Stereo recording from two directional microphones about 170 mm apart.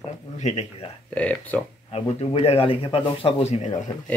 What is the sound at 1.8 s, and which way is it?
Speech, 35° left (ahead or behind).